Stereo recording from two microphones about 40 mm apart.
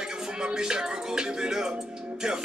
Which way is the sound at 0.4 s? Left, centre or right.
Centre.